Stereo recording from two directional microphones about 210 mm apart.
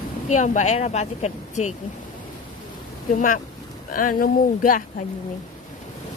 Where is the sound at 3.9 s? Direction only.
40° left (ahead or behind).